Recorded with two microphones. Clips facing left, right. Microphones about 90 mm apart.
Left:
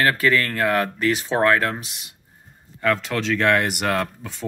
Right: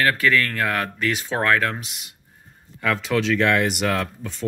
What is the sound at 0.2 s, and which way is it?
Speech, 35° left (ahead or behind).